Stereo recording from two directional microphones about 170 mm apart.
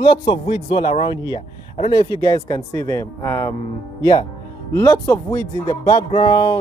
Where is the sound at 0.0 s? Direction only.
30° left (ahead or behind); by 3.5 s 15° left (ahead or behind).